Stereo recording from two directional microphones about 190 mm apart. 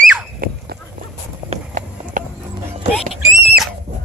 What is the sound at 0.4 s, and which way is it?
Horse, 50° right (ahead or behind).